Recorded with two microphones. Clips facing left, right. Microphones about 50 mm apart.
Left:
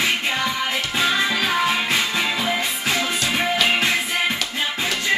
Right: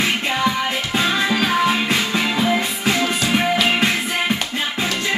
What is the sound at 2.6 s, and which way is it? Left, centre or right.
Music, right.